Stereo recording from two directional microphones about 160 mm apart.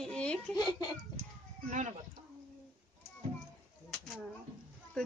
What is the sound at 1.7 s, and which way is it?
Speech, 50° right (ahead or behind).